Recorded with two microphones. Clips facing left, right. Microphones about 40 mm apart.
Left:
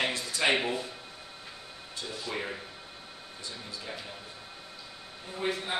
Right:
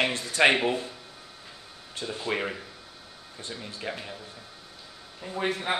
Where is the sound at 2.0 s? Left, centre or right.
Right.